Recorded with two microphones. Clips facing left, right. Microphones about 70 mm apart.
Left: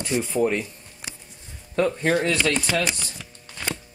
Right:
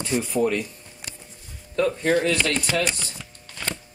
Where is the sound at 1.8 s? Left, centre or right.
Left.